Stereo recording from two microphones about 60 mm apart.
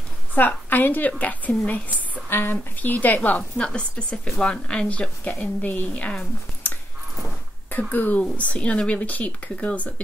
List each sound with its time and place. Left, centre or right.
0.3 s a woman's voice: left
2.2 s a woman's voice: left
7.9 s a woman's voice: left